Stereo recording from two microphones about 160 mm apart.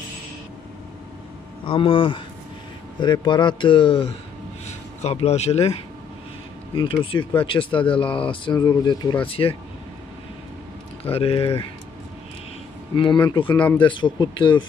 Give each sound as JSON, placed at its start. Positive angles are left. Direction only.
{"t": 1.7, "sound": "speech", "side_deg": 35}
{"t": 6.7, "sound": "speech", "side_deg": 30}
{"t": 11.1, "sound": "speech", "side_deg": 35}
{"t": 12.9, "sound": "speech", "side_deg": 30}
{"t": 13.5, "sound": "speech", "side_deg": 10}
{"t": 13.7, "sound": "speech", "side_deg": 30}